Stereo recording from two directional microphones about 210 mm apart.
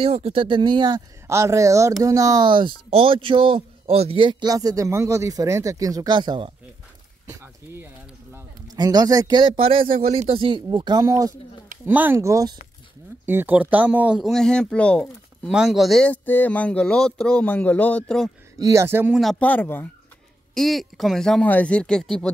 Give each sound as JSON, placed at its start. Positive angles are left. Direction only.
{"t": 0.0, "sound": "speech", "side_deg": -30}
{"t": 7.2, "sound": "a sound", "side_deg": -15}
{"t": 9.8, "sound": "speech", "side_deg": -40}
{"t": 10.3, "sound": "speech", "side_deg": -25}
{"t": 18.6, "sound": "speech", "side_deg": -15}